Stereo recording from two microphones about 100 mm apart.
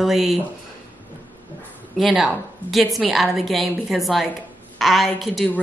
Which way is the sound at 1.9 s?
Centre (ahead or behind).